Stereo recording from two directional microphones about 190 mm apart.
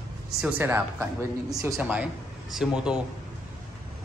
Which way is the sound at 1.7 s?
5° right (ahead or behind).